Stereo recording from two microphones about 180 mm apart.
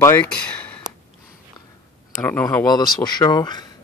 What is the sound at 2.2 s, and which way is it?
Speech, 10° left (ahead or behind).